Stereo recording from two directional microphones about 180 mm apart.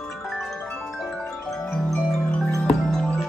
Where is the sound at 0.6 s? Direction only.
Centre (ahead or behind).